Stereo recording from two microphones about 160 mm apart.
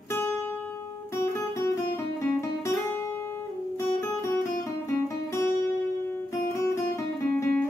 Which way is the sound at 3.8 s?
15° left (ahead or behind).